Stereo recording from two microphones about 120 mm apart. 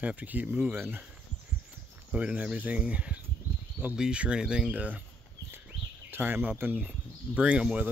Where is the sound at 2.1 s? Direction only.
10° right (ahead or behind).